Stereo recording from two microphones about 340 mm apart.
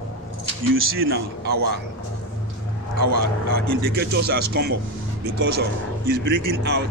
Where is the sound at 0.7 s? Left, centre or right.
Right.